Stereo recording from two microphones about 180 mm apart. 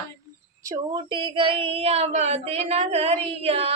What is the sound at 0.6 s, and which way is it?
Speech, 20° right (ahead or behind).